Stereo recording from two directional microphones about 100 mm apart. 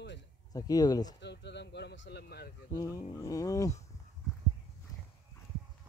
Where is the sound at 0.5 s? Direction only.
40° left (ahead or behind).